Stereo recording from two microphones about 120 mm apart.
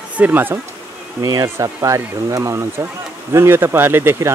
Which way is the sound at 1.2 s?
30° right (ahead or behind).